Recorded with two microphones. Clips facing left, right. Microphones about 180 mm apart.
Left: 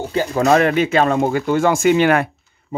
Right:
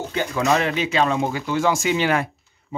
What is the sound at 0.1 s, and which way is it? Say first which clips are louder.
Speech: left 6 dB; 35° left (ahead or behind).